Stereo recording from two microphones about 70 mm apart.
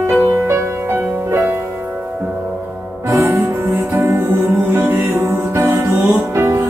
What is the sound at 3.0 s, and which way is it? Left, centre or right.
Music, right.